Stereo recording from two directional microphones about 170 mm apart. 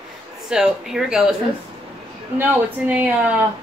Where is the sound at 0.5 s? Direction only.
5° right (ahead or behind).